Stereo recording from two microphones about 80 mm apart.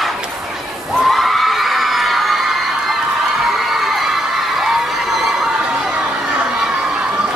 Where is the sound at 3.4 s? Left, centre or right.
Centre.